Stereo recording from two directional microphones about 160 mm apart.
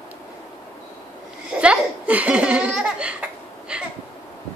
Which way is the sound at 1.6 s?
10° right (ahead or behind).